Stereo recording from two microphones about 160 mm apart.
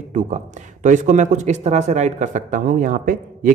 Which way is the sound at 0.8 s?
50° right (ahead or behind).